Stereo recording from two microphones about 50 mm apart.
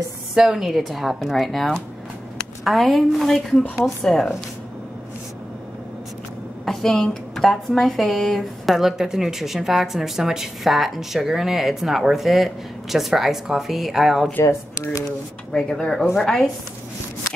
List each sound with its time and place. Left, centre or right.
0.3 s a woman's voice: centre
6.6 s a woman's voice: centre
14.4 s speech: left
15.8 s a woman's voice: centre